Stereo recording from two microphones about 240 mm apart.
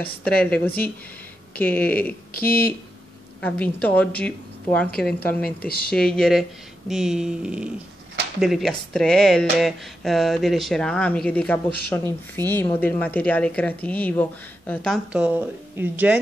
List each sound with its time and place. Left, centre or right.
0.0 s a woman's voice: centre
2.4 s speech: left
3.3 s a woman's voice: centre